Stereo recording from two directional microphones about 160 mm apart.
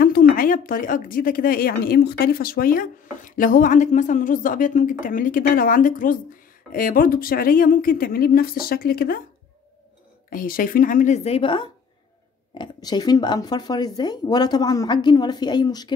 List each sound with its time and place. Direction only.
0.0 s speech: 65° left (ahead or behind)
10.3 s speech: 60° left (ahead or behind)
11.2 s a woman's voice: 35° left (ahead or behind)